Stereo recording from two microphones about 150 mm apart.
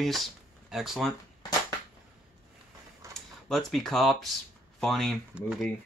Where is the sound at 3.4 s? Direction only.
Centre (ahead or behind).